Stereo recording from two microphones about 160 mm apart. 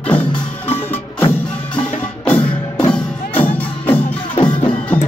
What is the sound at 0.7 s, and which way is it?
Wood block, 15° left (ahead or behind).